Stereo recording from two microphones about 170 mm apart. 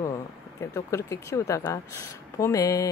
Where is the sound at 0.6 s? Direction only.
15° left (ahead or behind).